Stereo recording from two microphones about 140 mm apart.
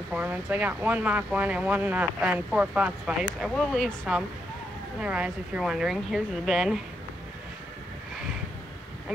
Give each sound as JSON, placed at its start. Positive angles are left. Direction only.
{"t": 0.1, "sound": "speech", "side_deg": -10}
{"t": 5.0, "sound": "speech", "side_deg": -10}